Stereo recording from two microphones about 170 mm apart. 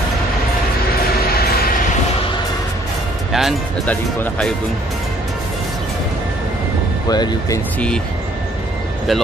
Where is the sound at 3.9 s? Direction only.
10° left (ahead or behind).